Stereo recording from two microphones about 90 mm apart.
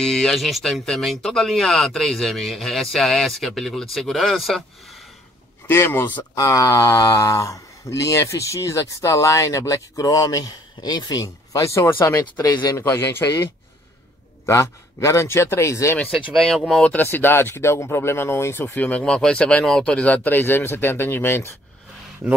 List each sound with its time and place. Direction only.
0.0 s speech: 5° left (ahead or behind)
5.7 s speech: 25° left (ahead or behind)
6.3 s speech: 40° left (ahead or behind)
11.5 s speech: 35° left (ahead or behind)
14.4 s speech: 35° left (ahead or behind)
16.4 s speech: 5° left (ahead or behind)
16.8 s speech: 20° left (ahead or behind)